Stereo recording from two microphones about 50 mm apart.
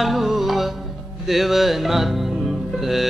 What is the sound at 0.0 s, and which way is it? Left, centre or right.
Music, centre.